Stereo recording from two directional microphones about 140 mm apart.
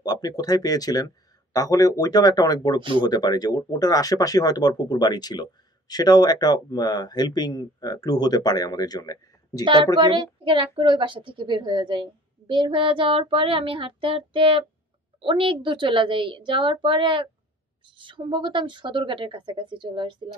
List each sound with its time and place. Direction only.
0.0 s speech: 30° left (ahead or behind)
10.0 s a woman's voice: 35° right (ahead or behind)